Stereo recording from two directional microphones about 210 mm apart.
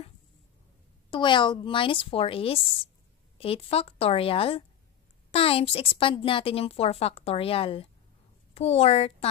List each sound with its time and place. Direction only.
1.1 s a woman's voice: 20° left (ahead or behind)